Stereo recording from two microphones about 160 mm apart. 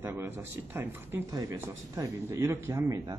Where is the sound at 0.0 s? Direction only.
15° right (ahead or behind).